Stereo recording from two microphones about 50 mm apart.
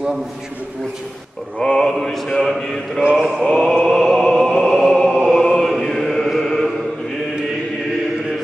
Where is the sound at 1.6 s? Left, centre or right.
Centre.